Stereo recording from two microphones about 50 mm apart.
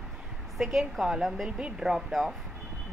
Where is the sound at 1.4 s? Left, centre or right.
Centre.